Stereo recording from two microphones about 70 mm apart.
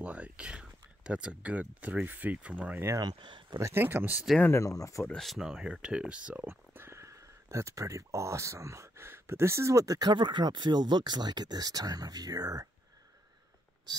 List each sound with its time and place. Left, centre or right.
0.0 s speech: centre
3.0 s speech: right
3.7 s speech: right
4.5 s speech: left
5.0 s speech: centre
6.4 s speech: right
9.9 s speech: right